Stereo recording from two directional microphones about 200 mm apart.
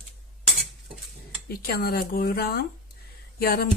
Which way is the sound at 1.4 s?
50° left (ahead or behind).